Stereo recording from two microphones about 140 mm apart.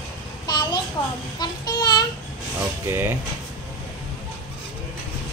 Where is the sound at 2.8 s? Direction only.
15° right (ahead or behind).